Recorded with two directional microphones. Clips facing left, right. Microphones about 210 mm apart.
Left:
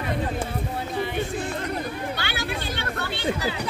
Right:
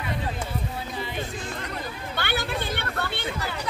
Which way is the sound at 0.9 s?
55° left (ahead or behind).